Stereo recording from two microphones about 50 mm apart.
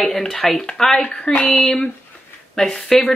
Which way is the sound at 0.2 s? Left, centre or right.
Centre.